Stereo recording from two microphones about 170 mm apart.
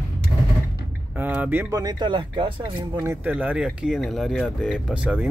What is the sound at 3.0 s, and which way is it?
Speech, 10° right (ahead or behind).